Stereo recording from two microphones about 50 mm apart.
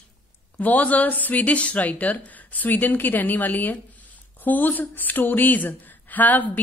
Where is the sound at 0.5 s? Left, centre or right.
Left.